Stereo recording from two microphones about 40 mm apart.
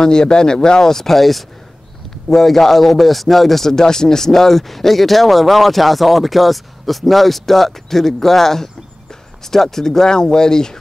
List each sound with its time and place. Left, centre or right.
0.0 s a man's voice: centre